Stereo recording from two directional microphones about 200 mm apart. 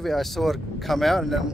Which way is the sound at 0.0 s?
Centre (ahead or behind).